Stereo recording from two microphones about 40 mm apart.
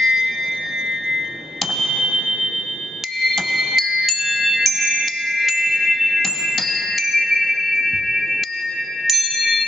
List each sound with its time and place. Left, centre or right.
0.0 s music: centre
1.8 s music: centre